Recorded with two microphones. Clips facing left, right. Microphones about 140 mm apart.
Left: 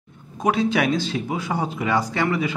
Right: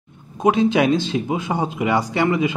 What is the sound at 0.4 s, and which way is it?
Speech, 20° right (ahead or behind).